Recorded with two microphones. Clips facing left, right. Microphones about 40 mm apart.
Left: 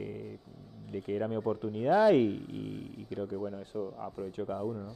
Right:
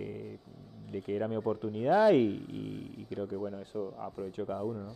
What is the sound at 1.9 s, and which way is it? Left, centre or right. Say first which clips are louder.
Speech: even; right.